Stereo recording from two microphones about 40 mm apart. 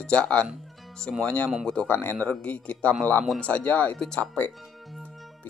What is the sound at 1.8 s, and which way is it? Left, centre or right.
Speech, left.